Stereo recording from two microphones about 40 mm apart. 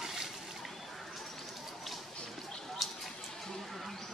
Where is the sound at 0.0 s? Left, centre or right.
Centre.